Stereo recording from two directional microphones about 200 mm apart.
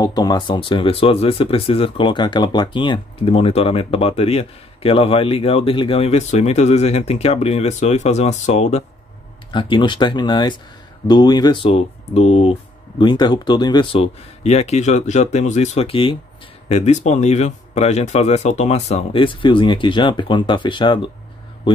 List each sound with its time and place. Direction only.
0.0 s speech: 20° left (ahead or behind)
9.5 s speech: 25° left (ahead or behind)